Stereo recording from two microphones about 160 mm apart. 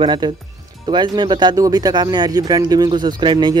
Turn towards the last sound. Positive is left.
turn(degrees=-25)  # may be behind; listen again after turning